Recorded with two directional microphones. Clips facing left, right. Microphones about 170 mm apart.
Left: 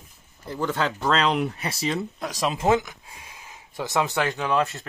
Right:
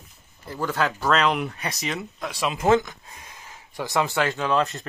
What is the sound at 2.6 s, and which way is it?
Speech, 10° left (ahead or behind).